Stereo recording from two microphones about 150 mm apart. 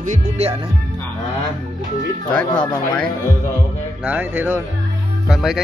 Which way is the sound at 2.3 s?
15° left (ahead or behind).